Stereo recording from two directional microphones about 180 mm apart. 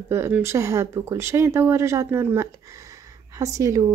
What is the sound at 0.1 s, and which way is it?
Speech, 15° right (ahead or behind).